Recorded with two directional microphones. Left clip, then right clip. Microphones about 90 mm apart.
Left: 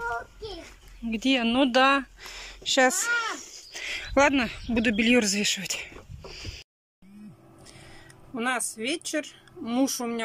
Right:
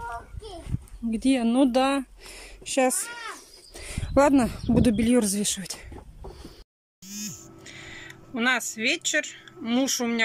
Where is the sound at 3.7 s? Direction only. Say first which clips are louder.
Left 4 dB; 50° right (ahead or behind); by 5.0 s 65° right (ahead or behind).